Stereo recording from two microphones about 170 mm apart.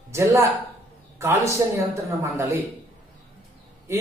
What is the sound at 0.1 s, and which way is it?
Speech, 15° right (ahead or behind).